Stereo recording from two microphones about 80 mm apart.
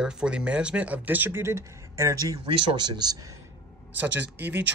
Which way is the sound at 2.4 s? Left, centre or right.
Right.